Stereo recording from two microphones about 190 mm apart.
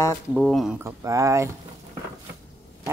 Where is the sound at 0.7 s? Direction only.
15° right (ahead or behind).